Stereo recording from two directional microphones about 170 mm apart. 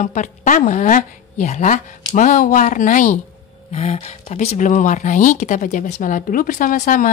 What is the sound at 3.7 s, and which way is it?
A woman's voice, 35° left (ahead or behind).